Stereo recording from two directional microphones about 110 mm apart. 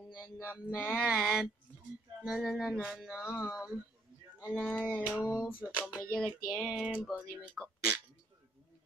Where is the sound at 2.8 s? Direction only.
5° right (ahead or behind).